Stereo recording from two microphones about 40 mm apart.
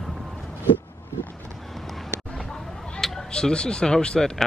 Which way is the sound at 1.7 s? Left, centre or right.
Centre.